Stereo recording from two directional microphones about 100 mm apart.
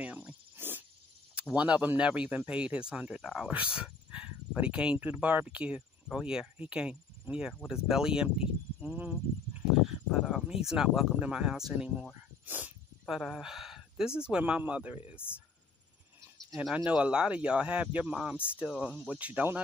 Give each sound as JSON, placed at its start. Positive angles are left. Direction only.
{"t": 0.0, "sound": "a sound", "side_deg": -15}
{"t": 1.3, "sound": "speech", "side_deg": -10}
{"t": 12.4, "sound": "speech", "side_deg": -15}
{"t": 13.0, "sound": "speech", "side_deg": 0}
{"t": 16.5, "sound": "speech", "side_deg": -10}